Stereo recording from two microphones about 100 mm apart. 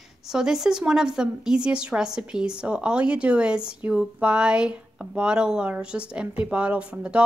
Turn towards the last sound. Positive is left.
turn(degrees=-10)  # may be behind; listen again after turning